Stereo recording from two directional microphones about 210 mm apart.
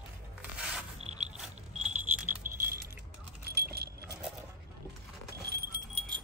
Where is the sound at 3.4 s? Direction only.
50° right (ahead or behind).